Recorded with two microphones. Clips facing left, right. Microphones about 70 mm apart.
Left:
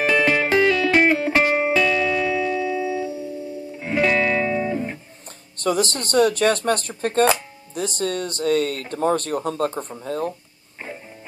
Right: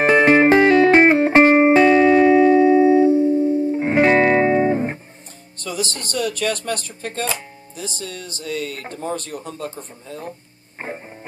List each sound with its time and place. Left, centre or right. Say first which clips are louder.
0.0 s music: right 6 dB; right
5.6 s speech: left 5 dB; left
10.8 s music: right 4 dB; right